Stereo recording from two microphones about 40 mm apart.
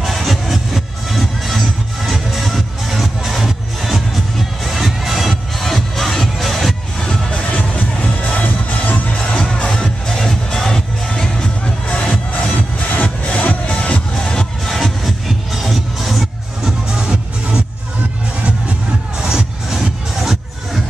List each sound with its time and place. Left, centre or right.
0.0 s music: centre
7.0 s music: centre
7.7 s music: left
9.2 s music: left
9.7 s music: centre
12.3 s music: left
14.1 s music: centre
16.6 s music: right
19.2 s music: centre